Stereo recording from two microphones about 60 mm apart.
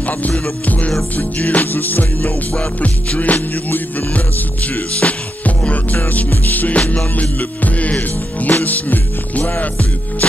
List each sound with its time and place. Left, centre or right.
0.0 s music: left
2.5 s music: centre
5.9 s music: left